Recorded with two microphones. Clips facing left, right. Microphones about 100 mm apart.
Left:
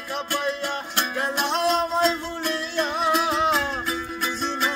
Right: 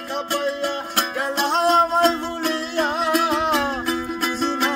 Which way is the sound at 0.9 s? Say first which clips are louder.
Right 1 dB; 50° right (ahead or behind).